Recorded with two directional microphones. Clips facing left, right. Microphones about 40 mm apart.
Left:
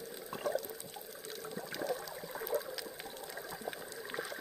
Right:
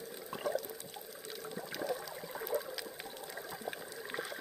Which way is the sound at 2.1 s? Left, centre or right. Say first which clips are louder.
Even; centre.